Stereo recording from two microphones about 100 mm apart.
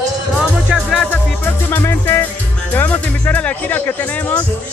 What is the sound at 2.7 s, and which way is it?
Speech, 20° left (ahead or behind).